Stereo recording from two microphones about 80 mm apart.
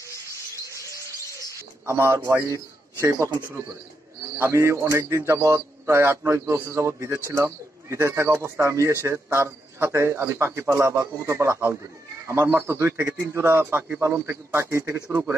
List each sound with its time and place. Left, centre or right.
1.9 s speech: right
4.5 s speech: right
7.1 s speech: right